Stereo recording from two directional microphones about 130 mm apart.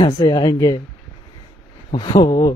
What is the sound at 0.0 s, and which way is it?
Speech, 30° left (ahead or behind).